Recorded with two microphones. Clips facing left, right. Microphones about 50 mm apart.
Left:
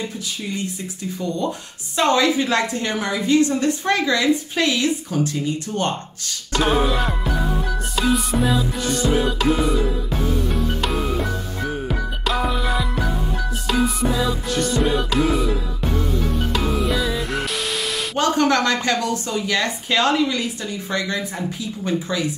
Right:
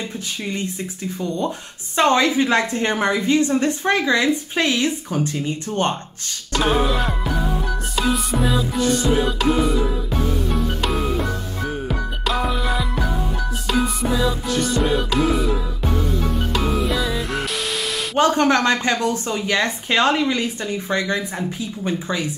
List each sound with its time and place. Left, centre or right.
2.0 s a woman's voice: right
2.9 s a woman's voice: right
6.5 s music: centre
11.9 s music: centre
18.1 s a woman's voice: right